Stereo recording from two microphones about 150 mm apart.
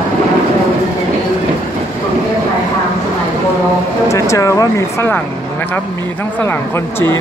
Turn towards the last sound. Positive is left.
turn(degrees=15)  # may be behind; listen again after turning